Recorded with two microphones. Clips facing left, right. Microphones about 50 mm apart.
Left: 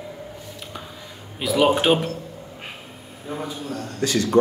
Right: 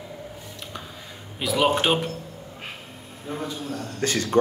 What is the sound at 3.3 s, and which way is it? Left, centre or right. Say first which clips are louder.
Speech: left 1 dB; centre.